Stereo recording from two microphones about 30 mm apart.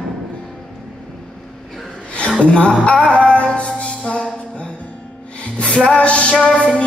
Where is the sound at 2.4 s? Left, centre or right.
Left.